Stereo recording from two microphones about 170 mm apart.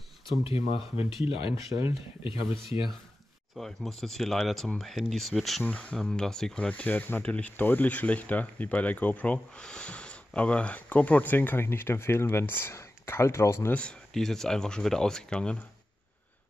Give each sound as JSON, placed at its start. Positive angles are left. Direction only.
{"t": 0.4, "sound": "speech", "side_deg": 30}
{"t": 3.5, "sound": "speech", "side_deg": 0}